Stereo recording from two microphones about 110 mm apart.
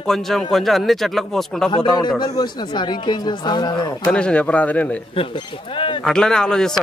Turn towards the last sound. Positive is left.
turn(degrees=5)  # may be behind; listen again after turning